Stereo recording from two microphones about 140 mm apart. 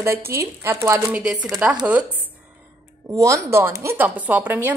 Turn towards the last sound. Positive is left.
turn(degrees=-15)  # may be behind; listen again after turning